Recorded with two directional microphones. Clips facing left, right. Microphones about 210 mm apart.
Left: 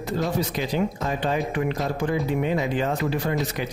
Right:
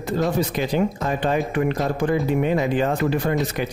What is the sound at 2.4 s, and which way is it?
Speech, 55° right (ahead or behind).